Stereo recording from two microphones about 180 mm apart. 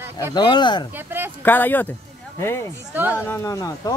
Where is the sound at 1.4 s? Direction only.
10° left (ahead or behind).